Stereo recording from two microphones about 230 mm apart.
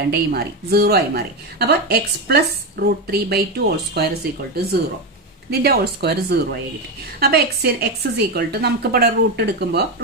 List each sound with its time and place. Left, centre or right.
0.0 s a woman's voice: right
5.5 s a woman's voice: right